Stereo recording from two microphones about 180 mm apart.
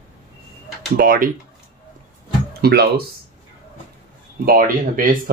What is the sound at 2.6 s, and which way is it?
Speech, 60° right (ahead or behind).